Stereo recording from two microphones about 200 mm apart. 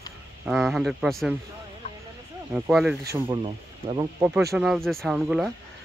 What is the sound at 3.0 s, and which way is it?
Speech, 15° right (ahead or behind).